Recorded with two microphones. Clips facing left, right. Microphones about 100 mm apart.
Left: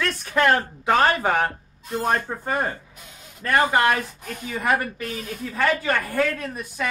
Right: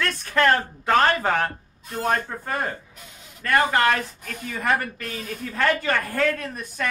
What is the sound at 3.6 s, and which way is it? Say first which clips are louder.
Speech: left 1 dB; 10° left (ahead or behind).